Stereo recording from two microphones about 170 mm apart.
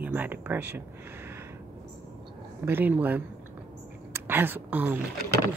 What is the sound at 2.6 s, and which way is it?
A woman's voice, 10° right (ahead or behind).